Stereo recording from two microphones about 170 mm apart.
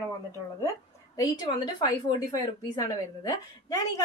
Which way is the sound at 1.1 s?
25° left (ahead or behind).